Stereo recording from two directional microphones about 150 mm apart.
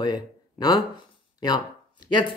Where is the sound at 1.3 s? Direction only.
25° left (ahead or behind).